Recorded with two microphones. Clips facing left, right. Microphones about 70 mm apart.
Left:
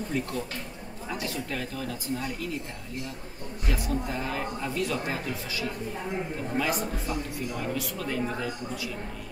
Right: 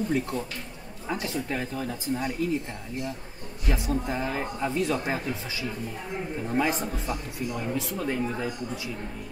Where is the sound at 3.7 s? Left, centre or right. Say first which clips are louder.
Right 2 dB; right.